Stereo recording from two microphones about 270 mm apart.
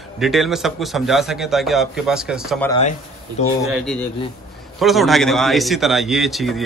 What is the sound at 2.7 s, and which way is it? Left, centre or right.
Speech, left.